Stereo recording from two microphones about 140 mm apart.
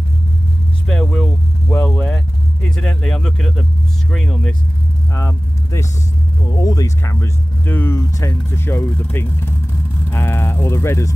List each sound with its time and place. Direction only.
0.8 s vehicle: 5° left (ahead or behind)
2.7 s speech: 5° left (ahead or behind)
5.1 s speech: 20° left (ahead or behind)